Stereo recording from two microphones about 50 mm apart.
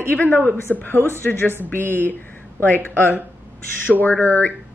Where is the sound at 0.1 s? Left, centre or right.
Left.